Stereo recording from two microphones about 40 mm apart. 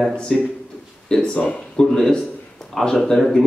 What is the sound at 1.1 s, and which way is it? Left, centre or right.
Speech, left.